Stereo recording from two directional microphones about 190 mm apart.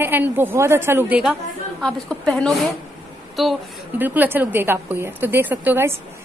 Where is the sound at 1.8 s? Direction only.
5° left (ahead or behind).